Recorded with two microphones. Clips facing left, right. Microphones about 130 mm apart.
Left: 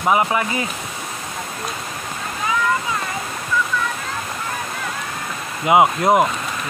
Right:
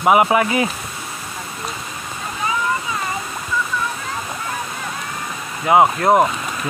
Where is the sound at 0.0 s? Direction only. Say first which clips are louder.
Right 4 dB; 20° right (ahead or behind).